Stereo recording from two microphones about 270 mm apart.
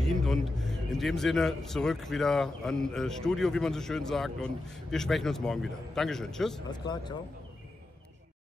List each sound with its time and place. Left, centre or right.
0.0 s a sound: centre
0.9 s a man's voice: centre
6.7 s speech: centre